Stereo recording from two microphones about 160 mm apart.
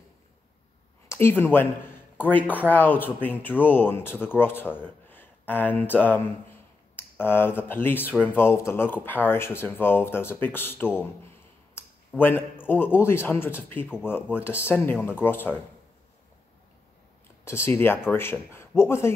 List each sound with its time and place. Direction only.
1.0 s speech: 15° left (ahead or behind)
12.1 s speech: 10° left (ahead or behind)
17.5 s speech: 15° left (ahead or behind)